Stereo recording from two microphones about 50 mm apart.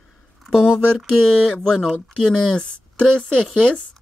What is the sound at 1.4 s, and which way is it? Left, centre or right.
Speech, centre.